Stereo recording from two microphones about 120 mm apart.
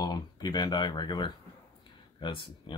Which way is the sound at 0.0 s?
35° left (ahead or behind).